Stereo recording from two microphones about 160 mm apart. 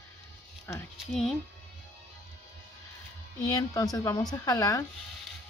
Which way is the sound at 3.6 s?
25° left (ahead or behind).